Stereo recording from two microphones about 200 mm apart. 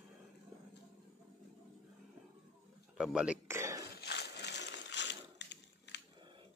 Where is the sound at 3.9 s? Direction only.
55° left (ahead or behind).